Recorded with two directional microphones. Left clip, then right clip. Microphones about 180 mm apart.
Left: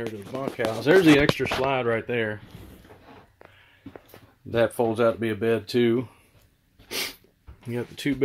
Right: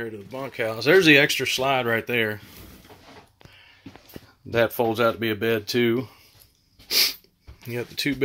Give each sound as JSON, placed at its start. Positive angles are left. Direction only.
{"t": 0.4, "sound": "speech", "side_deg": 5}
{"t": 4.5, "sound": "speech", "side_deg": -5}
{"t": 6.9, "sound": "sneeze", "side_deg": 10}
{"t": 7.6, "sound": "speech", "side_deg": 10}